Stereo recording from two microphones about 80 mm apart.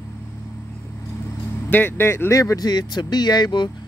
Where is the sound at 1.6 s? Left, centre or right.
Left.